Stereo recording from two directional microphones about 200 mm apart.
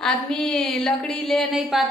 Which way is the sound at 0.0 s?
5° left (ahead or behind).